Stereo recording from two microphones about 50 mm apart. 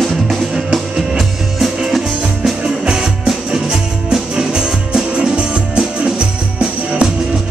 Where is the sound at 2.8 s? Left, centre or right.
Centre.